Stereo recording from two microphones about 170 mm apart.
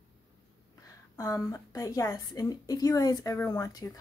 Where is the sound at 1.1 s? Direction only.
20° left (ahead or behind).